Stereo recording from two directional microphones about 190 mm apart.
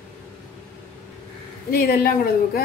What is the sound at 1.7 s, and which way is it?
Speech, 55° left (ahead or behind).